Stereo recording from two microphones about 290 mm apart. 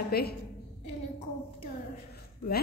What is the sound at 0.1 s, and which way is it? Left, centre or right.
Speech, left.